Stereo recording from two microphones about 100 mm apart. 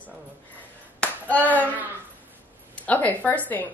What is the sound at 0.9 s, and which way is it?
Clapping, 15° left (ahead or behind).